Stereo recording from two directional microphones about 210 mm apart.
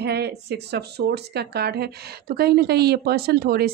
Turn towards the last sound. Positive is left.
turn(degrees=-50)  # may be behind; listen again after turning